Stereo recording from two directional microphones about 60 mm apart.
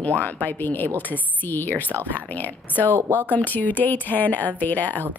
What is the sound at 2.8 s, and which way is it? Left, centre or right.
Speech, right.